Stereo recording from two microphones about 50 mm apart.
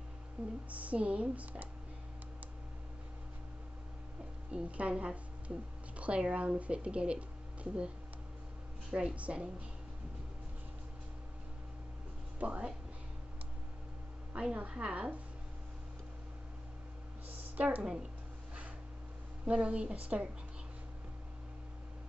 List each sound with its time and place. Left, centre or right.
0.7 s speech: right
4.5 s speech: right
8.9 s speech: right
12.4 s speech: right
14.3 s speech: right
17.3 s a sound: right
19.4 s speech: right